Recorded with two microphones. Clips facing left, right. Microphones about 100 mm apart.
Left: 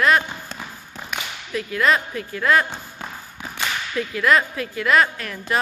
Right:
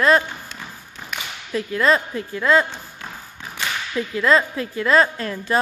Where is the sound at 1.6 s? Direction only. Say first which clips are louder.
Right 2 dB; 30° right (ahead or behind).